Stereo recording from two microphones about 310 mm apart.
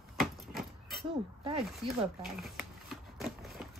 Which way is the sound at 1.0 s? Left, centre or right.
Centre.